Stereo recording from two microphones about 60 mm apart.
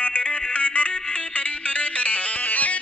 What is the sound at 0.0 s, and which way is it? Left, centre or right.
Music, left.